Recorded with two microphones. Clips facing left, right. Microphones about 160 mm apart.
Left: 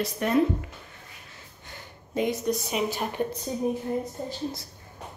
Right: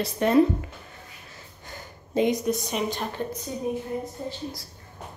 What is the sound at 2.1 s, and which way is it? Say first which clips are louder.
Speech: right 4 dB; 20° right (ahead or behind).